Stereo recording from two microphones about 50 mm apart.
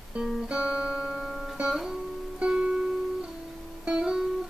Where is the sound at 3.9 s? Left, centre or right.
Centre.